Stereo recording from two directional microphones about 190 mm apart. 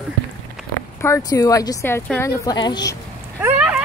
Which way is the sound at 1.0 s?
15° left (ahead or behind).